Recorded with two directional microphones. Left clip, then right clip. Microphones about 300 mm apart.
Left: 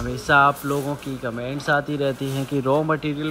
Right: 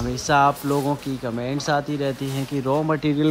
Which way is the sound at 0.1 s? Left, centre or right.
Centre.